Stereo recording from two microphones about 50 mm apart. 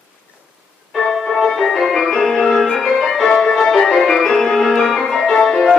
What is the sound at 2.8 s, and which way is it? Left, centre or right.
Piano, centre.